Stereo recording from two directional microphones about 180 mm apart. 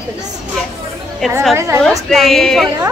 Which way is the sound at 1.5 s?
15° right (ahead or behind).